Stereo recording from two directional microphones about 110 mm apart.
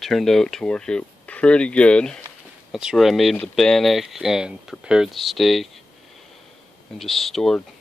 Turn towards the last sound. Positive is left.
turn(degrees=0)  # may be behind; listen again after turning